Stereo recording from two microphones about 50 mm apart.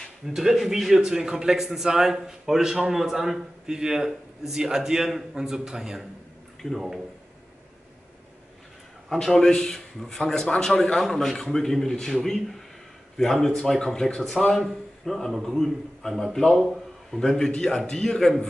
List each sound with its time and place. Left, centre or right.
0.3 s a man's voice: centre
6.6 s a man's voice: centre
9.1 s a man's voice: centre
16.5 s a man's voice: centre
17.1 s a man's voice: centre